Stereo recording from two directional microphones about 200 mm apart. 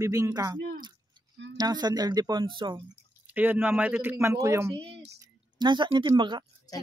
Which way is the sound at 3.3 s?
10° right (ahead or behind).